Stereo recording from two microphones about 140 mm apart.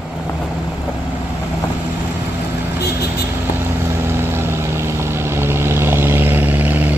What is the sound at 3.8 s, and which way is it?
Vehicle, 15° right (ahead or behind).